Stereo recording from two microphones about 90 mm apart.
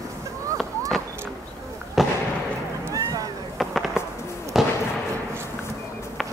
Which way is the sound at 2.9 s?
40° right (ahead or behind).